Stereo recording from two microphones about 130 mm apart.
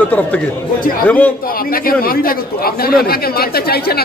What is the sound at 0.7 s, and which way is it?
Speech, 90° left.